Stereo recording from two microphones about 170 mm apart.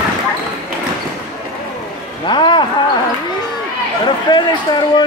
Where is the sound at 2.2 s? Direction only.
25° left (ahead or behind).